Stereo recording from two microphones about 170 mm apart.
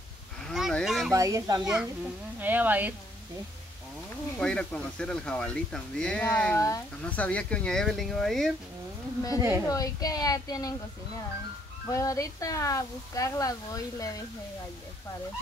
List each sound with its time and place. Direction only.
0.5 s a sound: centre (ahead or behind)
1.1 s speech: 20° right (ahead or behind)
1.6 s speech: 5° right (ahead or behind)
4.4 s speech: 5° left (ahead or behind)
9.7 s speech: 20° left (ahead or behind)
11.9 s speech: 20° left (ahead or behind)